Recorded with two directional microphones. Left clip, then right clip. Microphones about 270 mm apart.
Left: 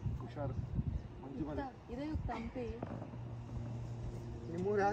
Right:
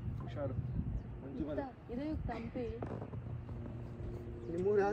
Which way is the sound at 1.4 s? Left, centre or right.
Centre.